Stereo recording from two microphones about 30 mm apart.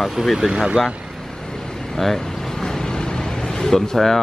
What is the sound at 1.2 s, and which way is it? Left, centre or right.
Vehicle, centre.